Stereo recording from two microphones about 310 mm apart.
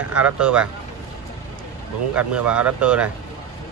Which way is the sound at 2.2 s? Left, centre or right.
Centre.